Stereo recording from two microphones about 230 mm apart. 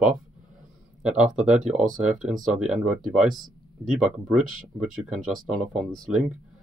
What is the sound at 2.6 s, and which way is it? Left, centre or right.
Speech, centre.